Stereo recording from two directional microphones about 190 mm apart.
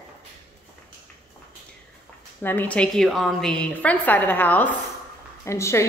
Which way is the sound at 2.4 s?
10° left (ahead or behind).